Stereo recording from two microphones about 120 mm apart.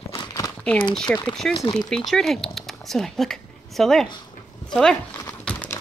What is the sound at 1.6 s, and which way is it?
Speech, 30° left (ahead or behind).